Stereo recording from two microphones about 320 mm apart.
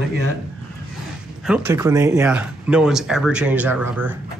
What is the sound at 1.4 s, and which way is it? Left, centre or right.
Speech, centre.